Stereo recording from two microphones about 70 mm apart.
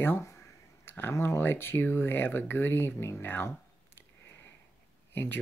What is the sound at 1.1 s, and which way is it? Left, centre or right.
Speech, left.